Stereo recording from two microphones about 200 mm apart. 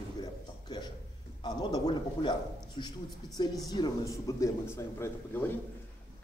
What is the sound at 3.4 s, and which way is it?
A man's voice, 20° left (ahead or behind).